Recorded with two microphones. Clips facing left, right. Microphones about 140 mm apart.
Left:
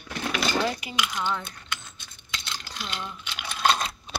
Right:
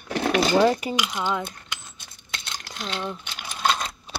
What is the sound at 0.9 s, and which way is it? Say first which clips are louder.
Speech: right 3 dB; 20° right (ahead or behind).